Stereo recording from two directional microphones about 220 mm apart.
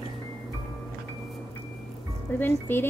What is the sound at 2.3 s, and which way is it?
Music, 10° left (ahead or behind).